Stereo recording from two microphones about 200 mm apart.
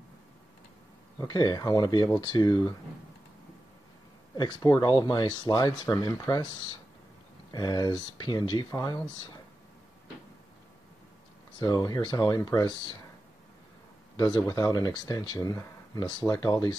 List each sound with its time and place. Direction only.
1.1 s speech: 20° left (ahead or behind)
4.4 s speech: 20° left (ahead or behind)
11.5 s speech: 20° left (ahead or behind)
14.1 s speech: 20° left (ahead or behind)